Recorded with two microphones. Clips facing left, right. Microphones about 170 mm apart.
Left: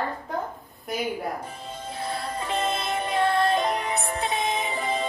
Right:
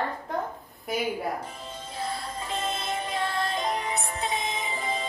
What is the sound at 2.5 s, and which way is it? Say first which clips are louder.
Music: left 4 dB; 65° left (ahead or behind).